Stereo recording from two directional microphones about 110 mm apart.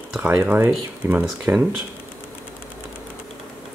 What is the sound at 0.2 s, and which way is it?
Speech, 15° right (ahead or behind).